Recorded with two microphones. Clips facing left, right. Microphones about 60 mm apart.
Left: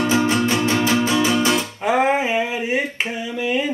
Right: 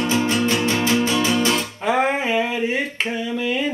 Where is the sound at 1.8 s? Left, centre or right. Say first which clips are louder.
Left 2 dB; centre.